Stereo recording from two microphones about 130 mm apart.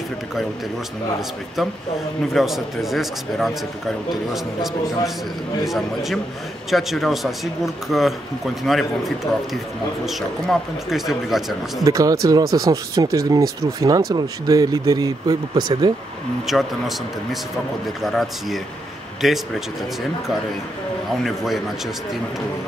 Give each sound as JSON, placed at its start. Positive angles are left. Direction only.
{"t": 2.3, "sound": "speech", "side_deg": 0}
{"t": 11.8, "sound": "speech", "side_deg": -25}
{"t": 16.4, "sound": "speech", "side_deg": 0}